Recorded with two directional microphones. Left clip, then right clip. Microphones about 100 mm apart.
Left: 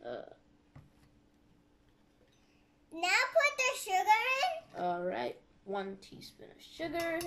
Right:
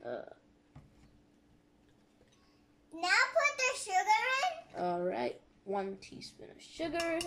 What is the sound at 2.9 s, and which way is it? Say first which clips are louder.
A child's voice: even; 30° left (ahead or behind).